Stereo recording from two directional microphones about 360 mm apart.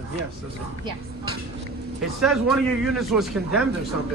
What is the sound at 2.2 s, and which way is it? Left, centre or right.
A man's voice, centre.